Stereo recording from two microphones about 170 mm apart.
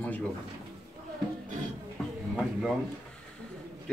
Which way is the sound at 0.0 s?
10° left (ahead or behind).